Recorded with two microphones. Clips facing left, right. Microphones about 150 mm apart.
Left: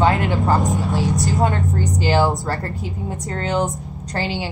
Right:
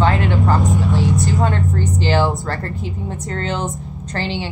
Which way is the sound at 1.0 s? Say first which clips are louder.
Right 2 dB; 40° left (ahead or behind).